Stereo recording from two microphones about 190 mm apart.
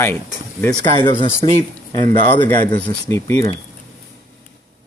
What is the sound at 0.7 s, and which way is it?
Speech, 25° left (ahead or behind).